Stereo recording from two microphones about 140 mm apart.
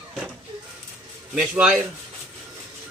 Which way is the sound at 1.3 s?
10° right (ahead or behind).